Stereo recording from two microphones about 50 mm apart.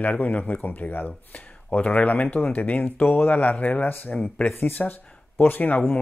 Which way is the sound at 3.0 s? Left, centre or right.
Left.